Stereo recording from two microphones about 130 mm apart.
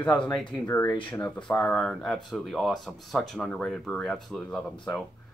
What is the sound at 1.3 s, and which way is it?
Speech, 10° left (ahead or behind).